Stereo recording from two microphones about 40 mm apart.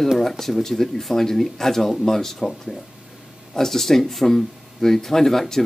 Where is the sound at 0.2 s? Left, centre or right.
Centre.